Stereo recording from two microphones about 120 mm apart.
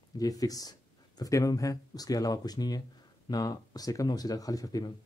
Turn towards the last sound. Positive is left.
turn(degrees=30)  # may be behind; listen again after turning